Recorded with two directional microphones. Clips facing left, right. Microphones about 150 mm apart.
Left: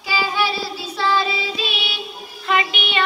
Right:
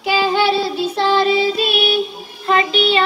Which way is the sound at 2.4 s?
35° right (ahead or behind).